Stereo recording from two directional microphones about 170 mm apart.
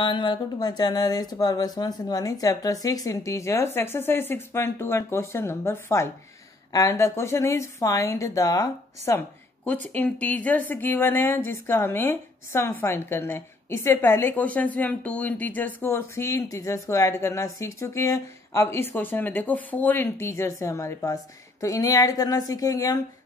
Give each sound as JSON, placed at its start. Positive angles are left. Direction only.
{"t": 0.0, "sound": "speech", "side_deg": 30}